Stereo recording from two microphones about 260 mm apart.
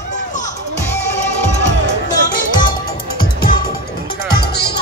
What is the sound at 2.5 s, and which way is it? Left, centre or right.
Music, centre.